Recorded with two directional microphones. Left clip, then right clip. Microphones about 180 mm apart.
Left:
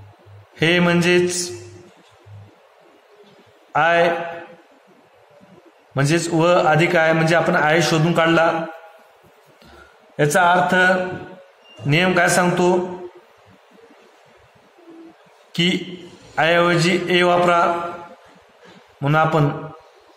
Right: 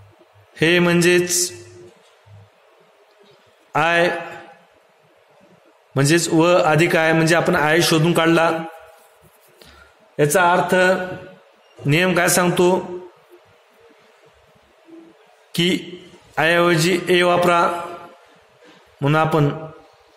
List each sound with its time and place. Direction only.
0.6 s mantra: 40° right (ahead or behind)
3.7 s mantra: 40° right (ahead or behind)
5.9 s a man's voice: 40° right (ahead or behind)
10.1 s mantra: 35° right (ahead or behind)
15.5 s a man's voice: 40° right (ahead or behind)
16.3 s mantra: 40° right (ahead or behind)
18.9 s mantra: 40° right (ahead or behind)